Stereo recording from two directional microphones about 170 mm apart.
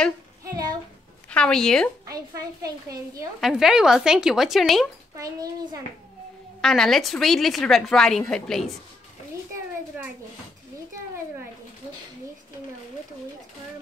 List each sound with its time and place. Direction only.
0.4 s a sound: 20° right (ahead or behind)
1.3 s a woman's voice: 5° left (ahead or behind)
2.0 s a woman's voice: 20° right (ahead or behind)
3.3 s a woman's voice: centre (ahead or behind)
5.1 s a woman's voice: 20° right (ahead or behind)
6.6 s a woman's voice: centre (ahead or behind)
9.9 s a child's voice: 10° right (ahead or behind)